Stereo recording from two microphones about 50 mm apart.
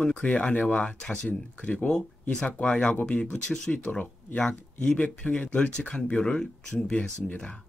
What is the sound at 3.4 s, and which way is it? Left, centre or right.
Speech, centre.